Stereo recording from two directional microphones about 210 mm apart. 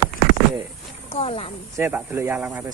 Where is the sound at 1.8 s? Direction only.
10° right (ahead or behind).